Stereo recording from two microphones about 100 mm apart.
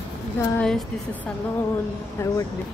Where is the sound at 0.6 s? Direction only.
5° left (ahead or behind).